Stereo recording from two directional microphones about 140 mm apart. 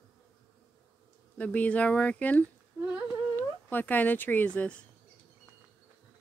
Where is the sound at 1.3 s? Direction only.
10° left (ahead or behind).